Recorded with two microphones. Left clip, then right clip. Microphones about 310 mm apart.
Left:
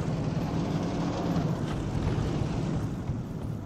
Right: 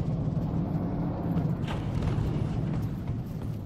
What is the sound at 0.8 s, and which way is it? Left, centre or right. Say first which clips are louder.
Vehicle: left 3 dB; left.